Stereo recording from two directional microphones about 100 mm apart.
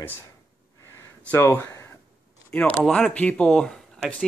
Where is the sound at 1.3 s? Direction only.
25° left (ahead or behind).